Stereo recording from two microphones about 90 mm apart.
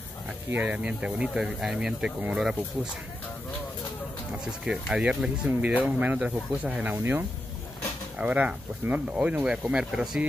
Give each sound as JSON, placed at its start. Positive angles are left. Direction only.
{"t": 0.5, "sound": "speech", "side_deg": -20}
{"t": 4.9, "sound": "speech", "side_deg": -10}